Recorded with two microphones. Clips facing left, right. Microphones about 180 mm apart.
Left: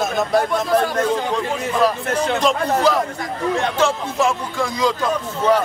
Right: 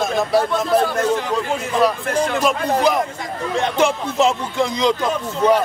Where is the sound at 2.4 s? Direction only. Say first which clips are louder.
Left 1 dB; 15° right (ahead or behind).